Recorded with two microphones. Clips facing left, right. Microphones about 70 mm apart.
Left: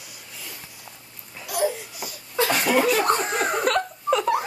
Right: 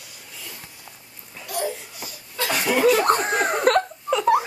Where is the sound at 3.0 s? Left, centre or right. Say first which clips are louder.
Right 2 dB; right.